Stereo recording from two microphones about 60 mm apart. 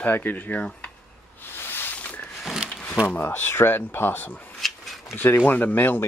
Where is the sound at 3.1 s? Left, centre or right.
Left.